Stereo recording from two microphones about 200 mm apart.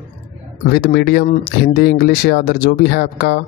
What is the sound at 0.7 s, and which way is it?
Speech, 50° left (ahead or behind).